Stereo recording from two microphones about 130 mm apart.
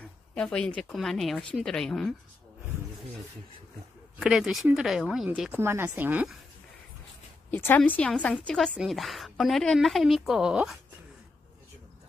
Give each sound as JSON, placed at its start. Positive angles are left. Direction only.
{"t": 0.3, "sound": "a woman's voice", "side_deg": 5}
{"t": 4.2, "sound": "a woman's voice", "side_deg": -5}
{"t": 5.6, "sound": "speech", "side_deg": -20}
{"t": 7.5, "sound": "a woman's voice", "side_deg": 15}